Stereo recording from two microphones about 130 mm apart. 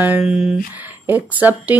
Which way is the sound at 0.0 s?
10° right (ahead or behind).